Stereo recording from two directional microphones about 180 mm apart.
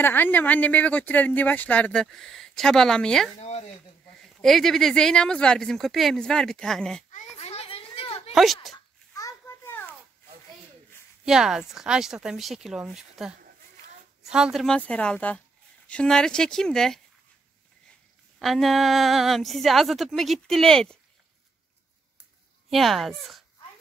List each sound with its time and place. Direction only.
0.0 s speech: 10° left (ahead or behind)
3.3 s speech: 35° left (ahead or behind)
4.4 s speech: centre (ahead or behind)
7.3 s a sound: 35° left (ahead or behind)
8.7 s a sound: 20° left (ahead or behind)
11.2 s speech: 5° right (ahead or behind)
18.4 s speech: centre (ahead or behind)
22.7 s speech: centre (ahead or behind)